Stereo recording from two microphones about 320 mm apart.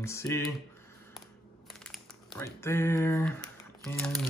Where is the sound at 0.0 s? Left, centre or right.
Centre.